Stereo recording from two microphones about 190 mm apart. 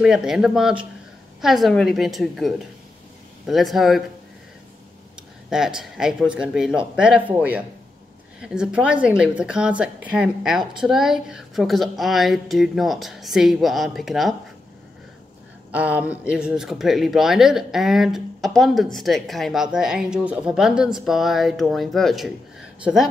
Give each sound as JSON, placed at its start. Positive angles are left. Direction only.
{"t": 0.0, "sound": "a woman's voice", "side_deg": 0}
{"t": 5.5, "sound": "a woman's voice", "side_deg": -5}
{"t": 15.7, "sound": "a woman's voice", "side_deg": -10}